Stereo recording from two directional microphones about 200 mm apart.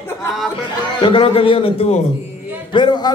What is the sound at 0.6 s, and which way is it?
A man's voice, 25° left (ahead or behind).